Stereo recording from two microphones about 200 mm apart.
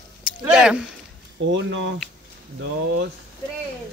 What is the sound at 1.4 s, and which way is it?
Speech, 65° right (ahead or behind).